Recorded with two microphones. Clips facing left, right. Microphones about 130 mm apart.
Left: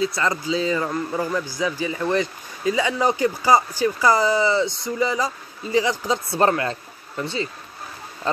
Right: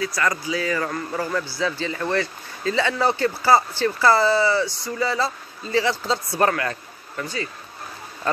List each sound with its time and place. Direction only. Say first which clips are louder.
0.0 s a man's voice: left 1 dB; 25° left (ahead or behind)